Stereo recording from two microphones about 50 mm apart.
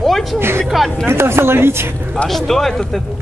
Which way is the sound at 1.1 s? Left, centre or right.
Right.